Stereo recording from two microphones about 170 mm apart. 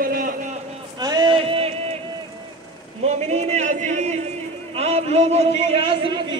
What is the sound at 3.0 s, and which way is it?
A man's voice, 40° right (ahead or behind).